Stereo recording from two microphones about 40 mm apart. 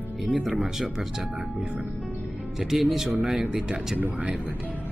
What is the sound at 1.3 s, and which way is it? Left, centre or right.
Speech, right.